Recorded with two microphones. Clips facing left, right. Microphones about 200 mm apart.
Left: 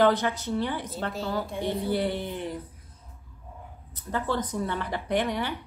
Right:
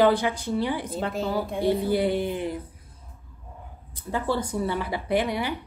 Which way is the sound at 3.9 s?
10° right (ahead or behind).